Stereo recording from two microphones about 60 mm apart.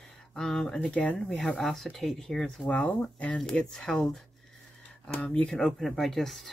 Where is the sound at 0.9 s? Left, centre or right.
Left.